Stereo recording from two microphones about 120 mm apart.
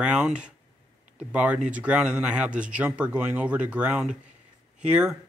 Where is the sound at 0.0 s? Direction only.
10° right (ahead or behind).